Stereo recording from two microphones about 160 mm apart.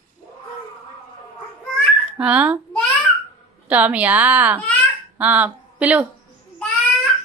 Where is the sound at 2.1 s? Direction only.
10° right (ahead or behind).